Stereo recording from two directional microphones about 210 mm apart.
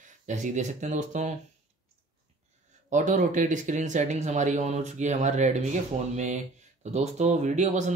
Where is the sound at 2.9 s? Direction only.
35° right (ahead or behind).